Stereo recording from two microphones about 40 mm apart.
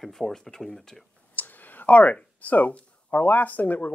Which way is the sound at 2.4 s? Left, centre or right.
Left.